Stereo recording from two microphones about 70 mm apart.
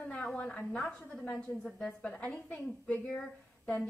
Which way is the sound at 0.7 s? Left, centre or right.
Centre.